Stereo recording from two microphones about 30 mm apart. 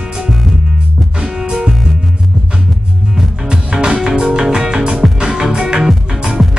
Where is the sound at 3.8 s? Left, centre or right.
Right.